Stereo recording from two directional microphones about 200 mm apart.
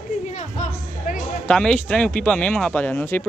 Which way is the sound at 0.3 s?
35° left (ahead or behind).